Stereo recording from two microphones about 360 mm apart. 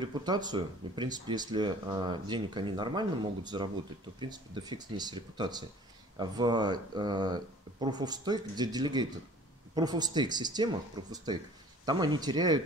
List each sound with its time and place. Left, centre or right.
0.0 s speech: centre